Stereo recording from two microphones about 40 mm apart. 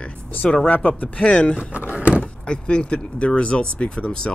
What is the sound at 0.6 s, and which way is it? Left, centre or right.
Speech, left.